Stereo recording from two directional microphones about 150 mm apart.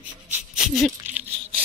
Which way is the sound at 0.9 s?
10° right (ahead or behind).